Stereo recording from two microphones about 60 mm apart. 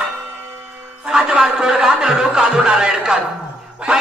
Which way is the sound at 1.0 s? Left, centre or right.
Centre.